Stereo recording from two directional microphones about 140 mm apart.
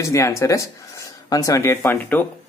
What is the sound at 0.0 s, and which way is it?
Speech, 20° left (ahead or behind).